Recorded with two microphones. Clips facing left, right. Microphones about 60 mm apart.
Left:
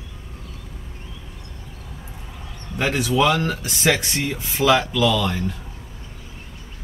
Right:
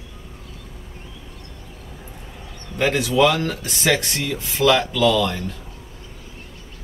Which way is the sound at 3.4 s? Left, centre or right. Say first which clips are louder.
Left 1 dB; centre.